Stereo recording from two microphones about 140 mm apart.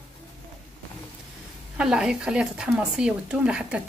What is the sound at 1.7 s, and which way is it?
Speech, 5° right (ahead or behind).